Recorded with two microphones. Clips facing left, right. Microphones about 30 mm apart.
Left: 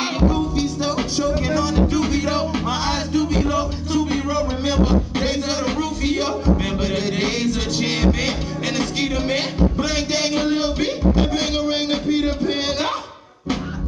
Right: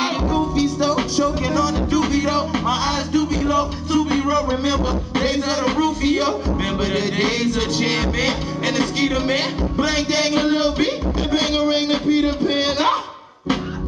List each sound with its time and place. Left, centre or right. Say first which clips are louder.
0.6 s music: right 3 dB; right
5.2 s music: right 2 dB; right
5.7 s a sound: right 3 dB; right
6.8 s music: right 2 dB; right